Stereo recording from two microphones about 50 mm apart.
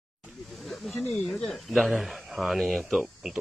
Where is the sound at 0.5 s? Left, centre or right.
Centre.